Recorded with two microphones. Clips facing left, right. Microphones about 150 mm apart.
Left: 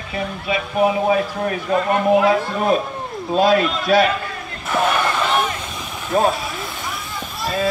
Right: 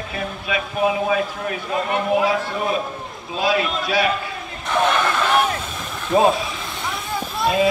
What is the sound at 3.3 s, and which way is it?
Speech, 50° left (ahead or behind).